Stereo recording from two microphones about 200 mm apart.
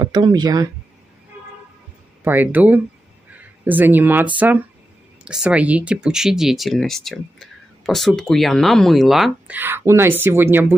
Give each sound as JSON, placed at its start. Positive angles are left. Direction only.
{"t": 0.0, "sound": "speech", "side_deg": -20}
{"t": 2.2, "sound": "speech", "side_deg": -10}